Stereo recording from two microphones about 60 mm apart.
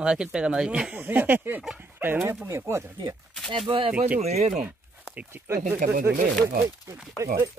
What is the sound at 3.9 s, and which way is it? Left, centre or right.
Speech, right.